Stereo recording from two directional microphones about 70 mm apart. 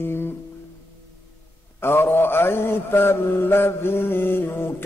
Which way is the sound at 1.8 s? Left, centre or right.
Left.